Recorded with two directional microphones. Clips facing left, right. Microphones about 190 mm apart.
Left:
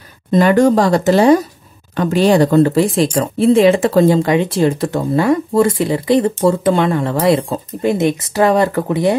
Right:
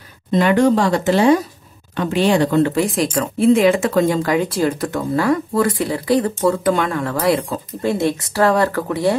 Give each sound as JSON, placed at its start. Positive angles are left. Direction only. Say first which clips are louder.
{"t": 0.3, "sound": "speech", "louder": "left 3 dB", "side_deg": 45}